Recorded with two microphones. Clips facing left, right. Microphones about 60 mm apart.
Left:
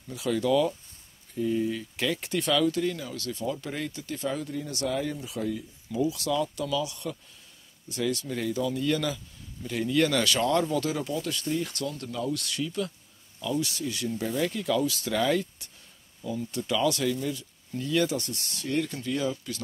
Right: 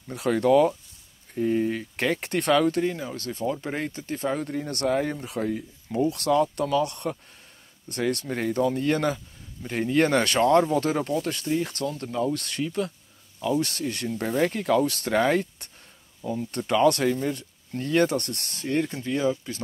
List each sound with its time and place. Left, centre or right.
0.1 s speech: right
2.8 s speech: right
18.6 s speech: right